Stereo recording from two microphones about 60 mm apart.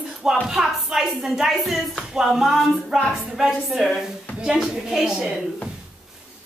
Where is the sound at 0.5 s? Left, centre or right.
Centre.